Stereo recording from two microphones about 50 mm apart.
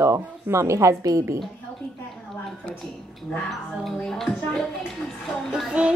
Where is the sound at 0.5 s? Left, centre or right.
Right.